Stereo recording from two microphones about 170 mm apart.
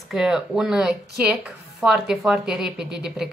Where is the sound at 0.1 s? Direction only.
5° right (ahead or behind).